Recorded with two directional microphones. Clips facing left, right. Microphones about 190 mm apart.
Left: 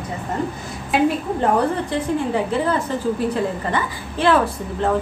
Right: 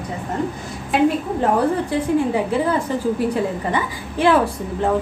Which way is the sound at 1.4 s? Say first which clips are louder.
Right 1 dB; 10° right (ahead or behind).